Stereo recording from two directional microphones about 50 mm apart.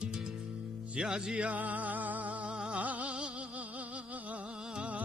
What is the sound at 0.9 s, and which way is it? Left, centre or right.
Speech, centre.